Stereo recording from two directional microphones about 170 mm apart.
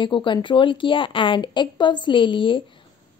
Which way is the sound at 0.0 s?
30° left (ahead or behind).